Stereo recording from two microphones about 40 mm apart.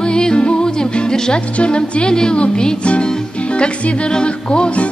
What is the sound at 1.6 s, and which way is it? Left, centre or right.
Music, left.